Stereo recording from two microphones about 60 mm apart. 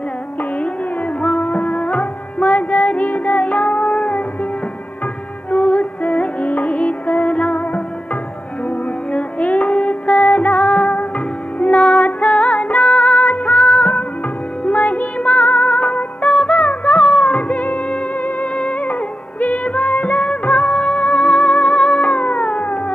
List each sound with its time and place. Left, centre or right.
0.4 s music: left
5.5 s music: left